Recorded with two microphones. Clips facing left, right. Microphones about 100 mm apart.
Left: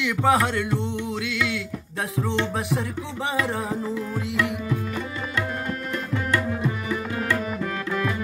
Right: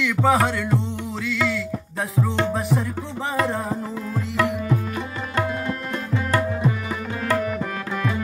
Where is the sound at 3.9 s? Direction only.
40° right (ahead or behind).